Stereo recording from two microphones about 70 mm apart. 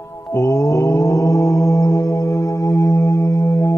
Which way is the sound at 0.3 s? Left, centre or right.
Left.